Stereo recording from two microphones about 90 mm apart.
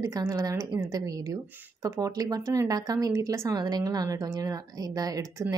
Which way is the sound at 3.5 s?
45° right (ahead or behind).